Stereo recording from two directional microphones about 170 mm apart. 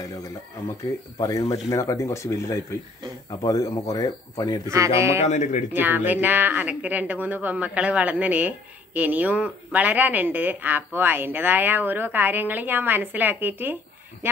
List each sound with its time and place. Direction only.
1.2 s speech: 20° left (ahead or behind)
4.6 s speech: 15° right (ahead or behind)
5.2 s speech: 45° left (ahead or behind)
5.7 s speech: 10° right (ahead or behind)